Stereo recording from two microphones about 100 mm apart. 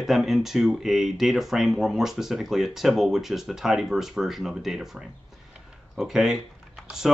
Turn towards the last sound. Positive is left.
turn(degrees=-5)  # may be behind; listen again after turning